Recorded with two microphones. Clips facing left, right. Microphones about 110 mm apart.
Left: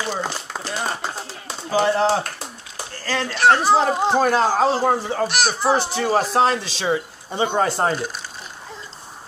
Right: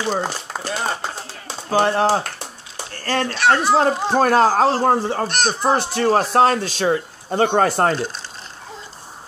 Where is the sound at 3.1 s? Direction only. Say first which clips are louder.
Even; 50° right (ahead or behind).